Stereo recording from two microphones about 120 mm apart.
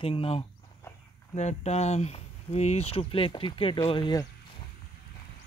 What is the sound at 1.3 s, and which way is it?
Speech, 75° left (ahead or behind).